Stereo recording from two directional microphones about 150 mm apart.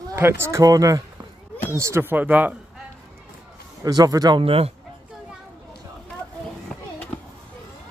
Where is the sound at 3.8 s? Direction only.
25° right (ahead or behind).